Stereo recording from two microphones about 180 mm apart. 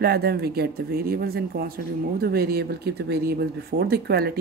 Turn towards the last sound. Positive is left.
turn(degrees=-60)  # may be behind; listen again after turning